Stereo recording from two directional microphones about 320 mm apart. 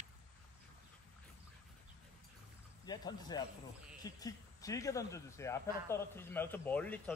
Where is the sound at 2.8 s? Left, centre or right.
Centre.